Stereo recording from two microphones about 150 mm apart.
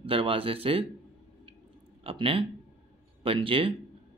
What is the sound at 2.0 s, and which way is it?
Speech, 40° right (ahead or behind).